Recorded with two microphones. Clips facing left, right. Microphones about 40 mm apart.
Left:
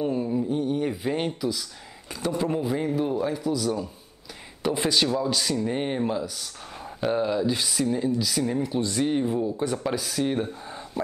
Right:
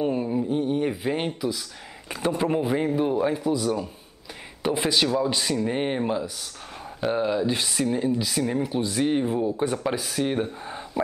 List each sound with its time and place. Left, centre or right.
0.0 s a sound: right
2.0 s speech: right
4.7 s speech: centre